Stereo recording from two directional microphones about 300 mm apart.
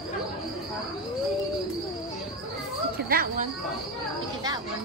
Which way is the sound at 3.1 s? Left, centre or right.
Right.